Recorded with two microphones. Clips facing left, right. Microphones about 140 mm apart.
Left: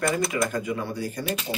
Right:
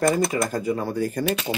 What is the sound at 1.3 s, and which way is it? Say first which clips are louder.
Speech: right 4 dB; 80° right.